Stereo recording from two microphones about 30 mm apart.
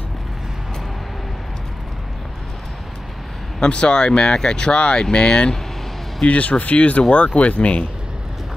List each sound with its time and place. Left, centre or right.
3.6 s speech: left
6.2 s speech: left